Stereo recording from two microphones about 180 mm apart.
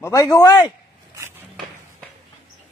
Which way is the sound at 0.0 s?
15° left (ahead or behind).